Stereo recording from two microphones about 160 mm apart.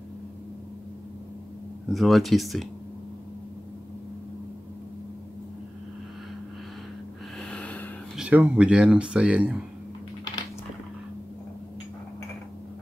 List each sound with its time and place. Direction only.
1.9 s speech: centre (ahead or behind)
7.3 s snort: 5° left (ahead or behind)
8.2 s speech: 10° right (ahead or behind)